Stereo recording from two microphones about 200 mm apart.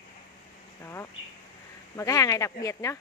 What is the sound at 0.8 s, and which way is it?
Speech, 15° left (ahead or behind).